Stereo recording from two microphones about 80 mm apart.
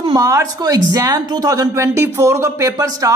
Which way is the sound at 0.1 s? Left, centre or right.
Right.